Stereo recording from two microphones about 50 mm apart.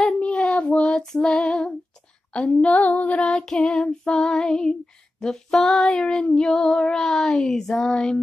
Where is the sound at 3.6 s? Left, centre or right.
Centre.